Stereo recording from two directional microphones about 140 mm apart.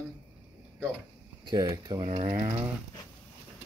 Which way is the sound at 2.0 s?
55° right (ahead or behind).